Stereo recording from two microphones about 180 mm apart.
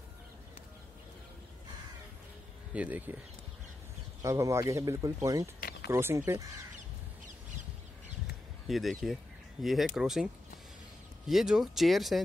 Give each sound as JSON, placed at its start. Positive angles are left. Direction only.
{"t": 2.7, "sound": "speech", "side_deg": -10}
{"t": 4.2, "sound": "speech", "side_deg": -15}
{"t": 5.6, "sound": "a sound", "side_deg": 60}
{"t": 5.9, "sound": "speech", "side_deg": -15}
{"t": 8.6, "sound": "speech", "side_deg": 0}